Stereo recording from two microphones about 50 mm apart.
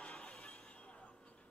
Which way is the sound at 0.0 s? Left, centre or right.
Centre.